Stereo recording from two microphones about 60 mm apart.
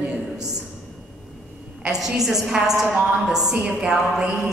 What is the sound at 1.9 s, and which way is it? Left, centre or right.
A woman's voice, centre.